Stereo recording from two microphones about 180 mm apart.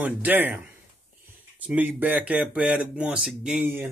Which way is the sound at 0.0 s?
10° right (ahead or behind).